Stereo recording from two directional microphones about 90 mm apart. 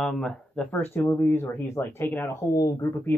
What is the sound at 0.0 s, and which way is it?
Speech, 5° left (ahead or behind).